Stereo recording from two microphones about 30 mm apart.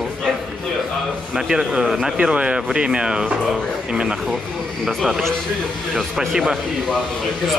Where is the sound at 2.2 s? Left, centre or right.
Right.